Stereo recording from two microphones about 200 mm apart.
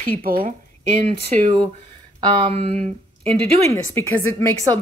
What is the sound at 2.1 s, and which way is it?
Speech, 25° right (ahead or behind).